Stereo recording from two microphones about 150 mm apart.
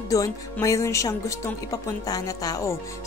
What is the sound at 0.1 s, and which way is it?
Speech, 20° left (ahead or behind).